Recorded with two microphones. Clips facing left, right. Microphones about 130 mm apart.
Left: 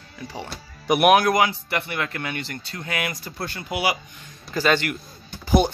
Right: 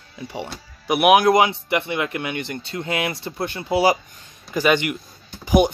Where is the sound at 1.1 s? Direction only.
20° right (ahead or behind).